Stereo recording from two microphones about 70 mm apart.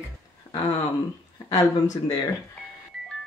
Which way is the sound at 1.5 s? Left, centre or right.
Left.